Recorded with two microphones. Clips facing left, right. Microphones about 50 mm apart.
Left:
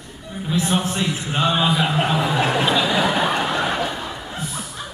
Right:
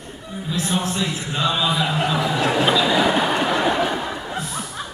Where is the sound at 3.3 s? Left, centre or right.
Centre.